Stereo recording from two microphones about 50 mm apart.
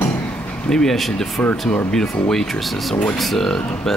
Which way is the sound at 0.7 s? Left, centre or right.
Centre.